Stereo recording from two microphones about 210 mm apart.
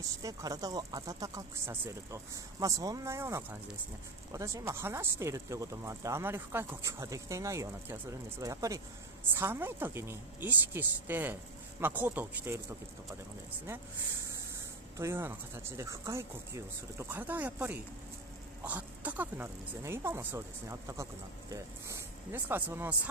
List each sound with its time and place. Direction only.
0.2 s speech: 15° right (ahead or behind)
15.0 s speech: 10° right (ahead or behind)